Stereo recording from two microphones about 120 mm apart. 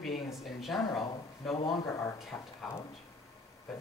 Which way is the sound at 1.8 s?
25° left (ahead or behind).